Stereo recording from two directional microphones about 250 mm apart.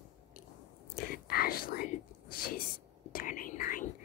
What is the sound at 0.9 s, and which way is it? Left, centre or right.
Whispering, left.